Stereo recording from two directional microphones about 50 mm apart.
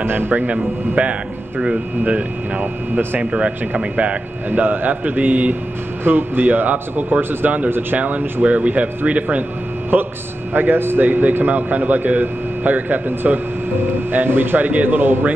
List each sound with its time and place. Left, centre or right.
0.0 s a man's voice: right
0.3 s speech: right
6.0 s a man's voice: right
9.9 s a man's voice: right
11.1 s a man's voice: right